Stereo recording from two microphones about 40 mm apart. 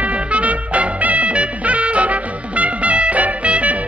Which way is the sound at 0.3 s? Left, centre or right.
Right.